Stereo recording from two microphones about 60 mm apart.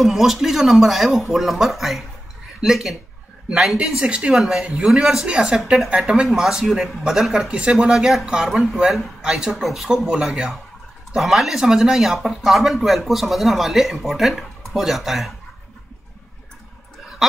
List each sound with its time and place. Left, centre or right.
0.0 s speech: centre
4.4 s speech: centre
7.9 s speech: centre
9.3 s speech: centre
17.2 s speech: centre